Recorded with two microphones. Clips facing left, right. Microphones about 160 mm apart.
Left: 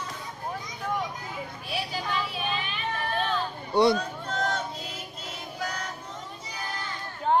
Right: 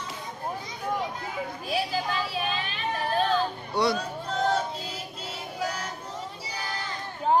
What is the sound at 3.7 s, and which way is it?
Speech, 20° left (ahead or behind).